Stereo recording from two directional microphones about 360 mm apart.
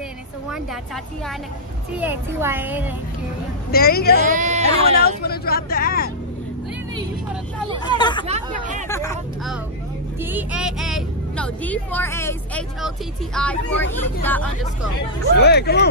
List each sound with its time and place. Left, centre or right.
2.0 s speech: centre
3.7 s speech: left
4.4 s speech: centre
5.0 s speech: left
8.0 s speech: centre
8.3 s speech: right
8.8 s speech: centre
15.4 s speech: left